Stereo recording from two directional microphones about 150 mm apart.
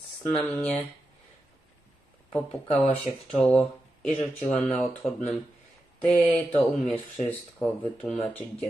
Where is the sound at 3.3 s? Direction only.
Centre (ahead or behind).